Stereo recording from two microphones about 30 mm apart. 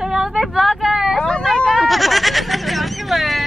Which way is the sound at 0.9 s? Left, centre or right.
Centre.